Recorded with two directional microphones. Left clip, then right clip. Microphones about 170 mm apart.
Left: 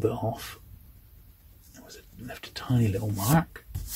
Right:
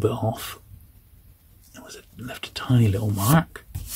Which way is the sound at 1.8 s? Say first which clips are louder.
Right 6 dB; 45° right (ahead or behind).